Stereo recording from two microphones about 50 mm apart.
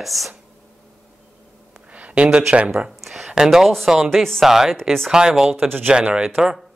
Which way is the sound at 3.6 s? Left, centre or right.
Centre.